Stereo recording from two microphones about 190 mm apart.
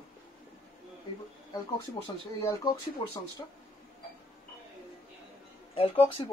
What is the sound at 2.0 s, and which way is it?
Speech, 20° left (ahead or behind).